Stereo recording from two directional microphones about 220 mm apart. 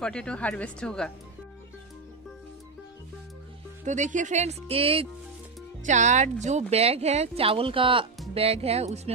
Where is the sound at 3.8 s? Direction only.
35° right (ahead or behind).